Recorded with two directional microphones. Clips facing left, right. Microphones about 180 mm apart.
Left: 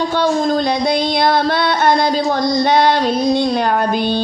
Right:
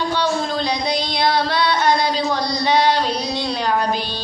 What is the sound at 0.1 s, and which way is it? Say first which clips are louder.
Female singing: left 5 dB; 50° left (ahead or behind).